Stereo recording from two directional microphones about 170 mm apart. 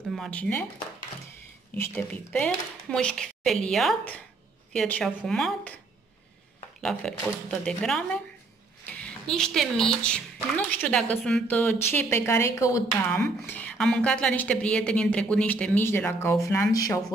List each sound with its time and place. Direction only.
0.1 s speech: 5° left (ahead or behind)
1.8 s a woman's voice: 5° left (ahead or behind)
6.8 s a woman's voice: 5° left (ahead or behind)
8.8 s a sound: 5° left (ahead or behind)
10.0 s a woman's voice: 10° left (ahead or behind)